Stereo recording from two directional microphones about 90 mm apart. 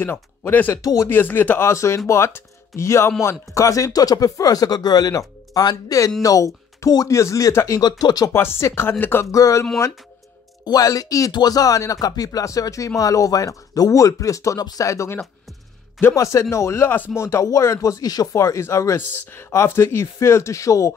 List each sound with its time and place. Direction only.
0.0 s speech: 20° left (ahead or behind)
1.7 s speech: 35° left (ahead or behind)
8.3 s speech: 30° left (ahead or behind)
9.3 s speech: 35° left (ahead or behind)
16.2 s speech: 35° left (ahead or behind)